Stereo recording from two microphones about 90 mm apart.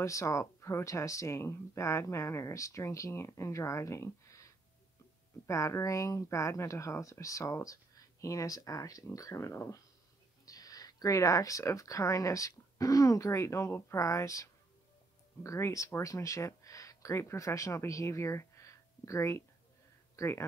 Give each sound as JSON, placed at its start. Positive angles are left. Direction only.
{"t": 0.0, "sound": "speech", "side_deg": 35}
{"t": 5.5, "sound": "speech", "side_deg": 35}
{"t": 10.4, "sound": "speech", "side_deg": 40}